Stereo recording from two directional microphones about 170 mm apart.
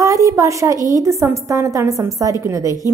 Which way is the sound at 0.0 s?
20° right (ahead or behind).